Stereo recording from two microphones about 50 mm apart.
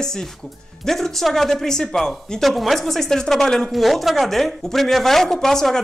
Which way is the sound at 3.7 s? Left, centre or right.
Centre.